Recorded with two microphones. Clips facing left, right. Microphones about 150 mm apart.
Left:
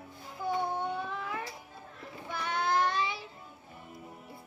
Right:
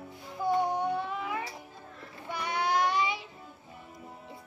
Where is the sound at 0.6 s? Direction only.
15° right (ahead or behind).